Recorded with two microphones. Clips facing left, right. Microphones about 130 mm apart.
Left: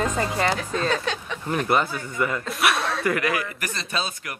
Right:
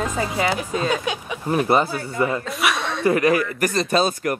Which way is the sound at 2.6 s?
Centre (ahead or behind).